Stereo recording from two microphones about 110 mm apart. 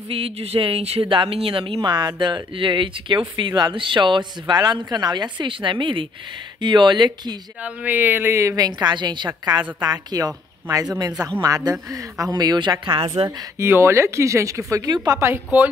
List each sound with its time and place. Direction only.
0.1 s speech: 60° right (ahead or behind); by 7.3 s 45° right (ahead or behind)
7.6 s a woman's voice: 15° right (ahead or behind); by 13.1 s 45° right (ahead or behind)
13.6 s speech: 25° right (ahead or behind)